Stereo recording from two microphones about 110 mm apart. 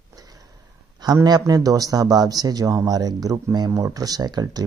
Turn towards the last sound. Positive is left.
turn(degrees=-40)  # may be behind; listen again after turning